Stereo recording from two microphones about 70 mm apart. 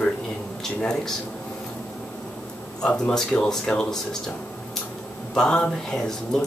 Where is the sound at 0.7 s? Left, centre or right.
Centre.